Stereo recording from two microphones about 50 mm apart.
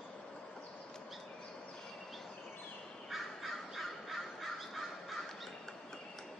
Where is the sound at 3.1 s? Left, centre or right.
Centre.